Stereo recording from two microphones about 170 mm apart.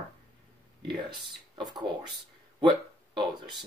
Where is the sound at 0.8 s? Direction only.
25° right (ahead or behind).